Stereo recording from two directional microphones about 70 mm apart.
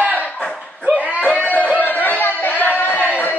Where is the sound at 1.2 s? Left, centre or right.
Left.